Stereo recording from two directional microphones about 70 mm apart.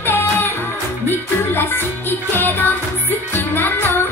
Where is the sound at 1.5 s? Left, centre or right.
Left.